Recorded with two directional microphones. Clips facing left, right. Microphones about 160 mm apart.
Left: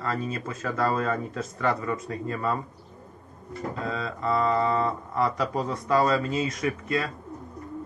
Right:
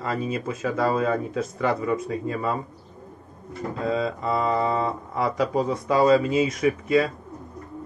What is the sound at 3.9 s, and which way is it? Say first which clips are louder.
Speech: right 4 dB; 15° right (ahead or behind).